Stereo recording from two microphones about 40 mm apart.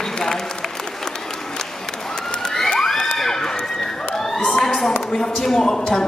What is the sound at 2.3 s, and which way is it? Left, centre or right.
Children shouting, centre.